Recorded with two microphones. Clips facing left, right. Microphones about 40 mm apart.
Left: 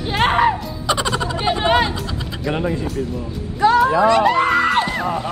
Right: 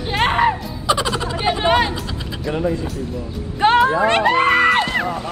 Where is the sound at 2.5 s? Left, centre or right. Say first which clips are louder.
Right 1 dB; left.